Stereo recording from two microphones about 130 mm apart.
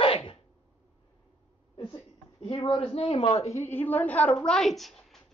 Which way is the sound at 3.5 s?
20° left (ahead or behind).